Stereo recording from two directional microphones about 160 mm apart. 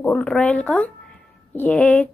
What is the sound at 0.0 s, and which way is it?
A woman's voice, 5° left (ahead or behind).